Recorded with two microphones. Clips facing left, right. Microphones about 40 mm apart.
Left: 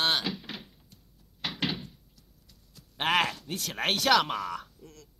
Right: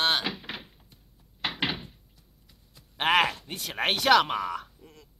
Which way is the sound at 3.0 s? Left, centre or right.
Centre.